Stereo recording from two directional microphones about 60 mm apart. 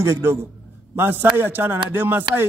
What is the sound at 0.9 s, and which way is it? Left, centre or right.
A man's voice, right.